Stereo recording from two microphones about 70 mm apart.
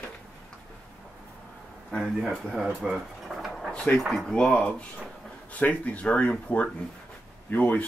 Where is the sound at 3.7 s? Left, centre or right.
Centre.